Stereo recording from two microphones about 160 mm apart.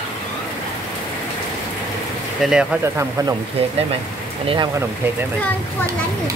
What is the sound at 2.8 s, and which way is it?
Speech, 20° right (ahead or behind).